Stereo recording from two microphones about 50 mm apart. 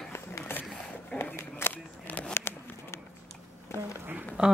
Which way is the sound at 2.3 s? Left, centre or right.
Left.